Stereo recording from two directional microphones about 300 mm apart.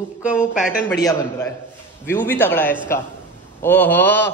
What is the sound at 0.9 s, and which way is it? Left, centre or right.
A man's voice, centre.